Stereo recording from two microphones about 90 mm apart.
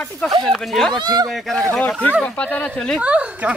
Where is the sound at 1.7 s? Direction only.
5° left (ahead or behind).